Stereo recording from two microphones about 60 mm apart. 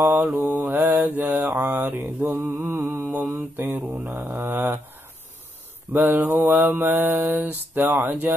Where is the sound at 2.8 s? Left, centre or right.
Right.